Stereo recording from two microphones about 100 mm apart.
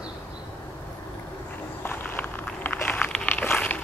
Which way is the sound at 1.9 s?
15° left (ahead or behind).